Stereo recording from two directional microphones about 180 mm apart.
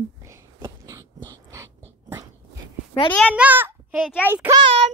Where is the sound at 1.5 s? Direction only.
15° right (ahead or behind).